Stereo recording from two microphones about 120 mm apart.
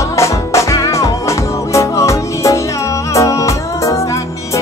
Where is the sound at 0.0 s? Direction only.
25° left (ahead or behind).